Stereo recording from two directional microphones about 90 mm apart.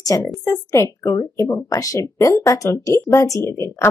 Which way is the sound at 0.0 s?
35° left (ahead or behind).